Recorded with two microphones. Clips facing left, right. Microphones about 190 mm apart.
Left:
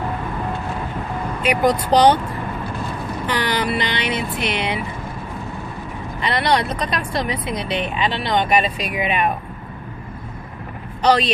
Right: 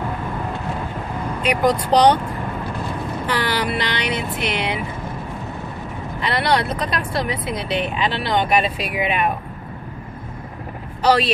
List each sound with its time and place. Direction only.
1.4 s speech: 5° left (ahead or behind)
3.3 s speech: 5° right (ahead or behind)
6.2 s speech: 5° right (ahead or behind)
11.0 s speech: 5° right (ahead or behind)